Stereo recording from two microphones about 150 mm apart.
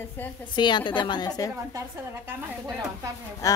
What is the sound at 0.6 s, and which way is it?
Speech, 30° left (ahead or behind).